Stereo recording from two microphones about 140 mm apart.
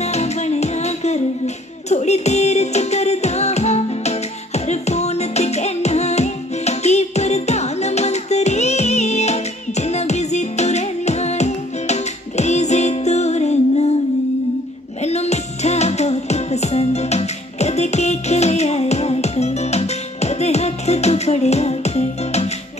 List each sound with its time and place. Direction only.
0.0 s music: 50° left (ahead or behind)
15.0 s music: 50° left (ahead or behind)